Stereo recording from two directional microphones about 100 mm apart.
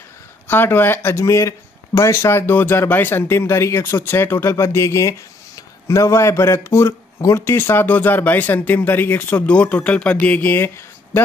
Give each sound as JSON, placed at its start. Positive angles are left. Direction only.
{"t": 0.5, "sound": "speech", "side_deg": 20}